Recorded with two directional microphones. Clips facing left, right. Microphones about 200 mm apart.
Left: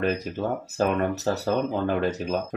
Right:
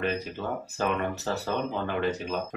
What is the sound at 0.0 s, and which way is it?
Speech, 40° left (ahead or behind).